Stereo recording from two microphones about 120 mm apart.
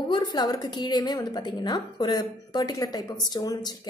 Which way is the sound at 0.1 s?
35° left (ahead or behind).